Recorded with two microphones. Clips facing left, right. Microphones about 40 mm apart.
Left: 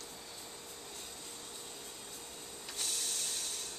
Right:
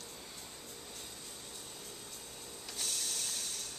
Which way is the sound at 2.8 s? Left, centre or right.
Centre.